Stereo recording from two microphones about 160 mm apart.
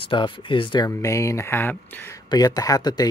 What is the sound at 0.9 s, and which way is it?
Speech, 20° left (ahead or behind).